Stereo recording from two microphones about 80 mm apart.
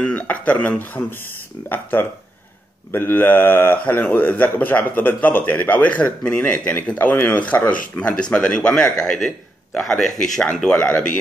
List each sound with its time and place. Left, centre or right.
0.0 s a man's voice: centre